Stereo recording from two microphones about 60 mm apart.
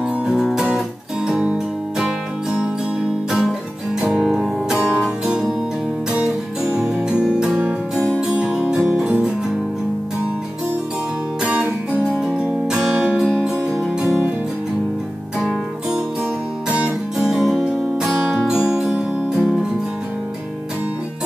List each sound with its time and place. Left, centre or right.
0.3 s guitar: centre
0.7 s music: centre
11.4 s music: right
15.3 s music: centre
17.3 s music: centre